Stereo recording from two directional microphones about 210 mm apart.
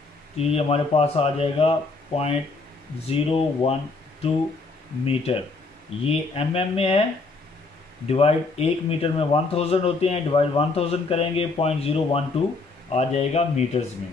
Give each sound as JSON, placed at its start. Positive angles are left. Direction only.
{"t": 0.4, "sound": "speech", "side_deg": 30}
{"t": 5.0, "sound": "speech", "side_deg": 30}
{"t": 8.1, "sound": "speech", "side_deg": 30}